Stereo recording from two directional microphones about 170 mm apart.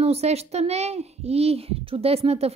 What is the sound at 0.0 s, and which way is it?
Speech, 40° right (ahead or behind).